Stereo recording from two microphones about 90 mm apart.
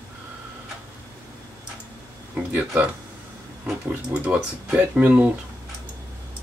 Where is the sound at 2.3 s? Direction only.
15° right (ahead or behind).